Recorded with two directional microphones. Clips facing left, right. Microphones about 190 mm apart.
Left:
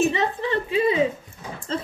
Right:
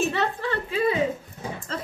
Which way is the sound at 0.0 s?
15° left (ahead or behind).